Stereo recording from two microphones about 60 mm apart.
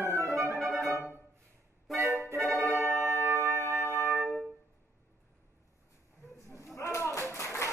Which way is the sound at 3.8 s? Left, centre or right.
Left.